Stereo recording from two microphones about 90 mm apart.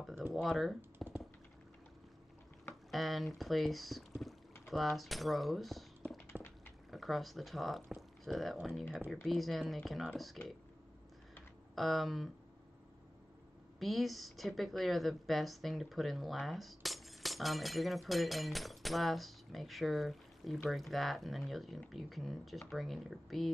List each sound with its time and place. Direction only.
0.3 s a woman's voice: centre (ahead or behind)
0.7 s a sound: 25° right (ahead or behind)
2.9 s speech: centre (ahead or behind)
6.3 s a sound: 10° left (ahead or behind)
6.9 s a woman's voice: centre (ahead or behind)
11.7 s a woman's voice: centre (ahead or behind)
13.7 s a woman's voice: centre (ahead or behind)